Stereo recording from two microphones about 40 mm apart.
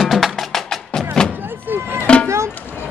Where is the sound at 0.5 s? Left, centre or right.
Centre.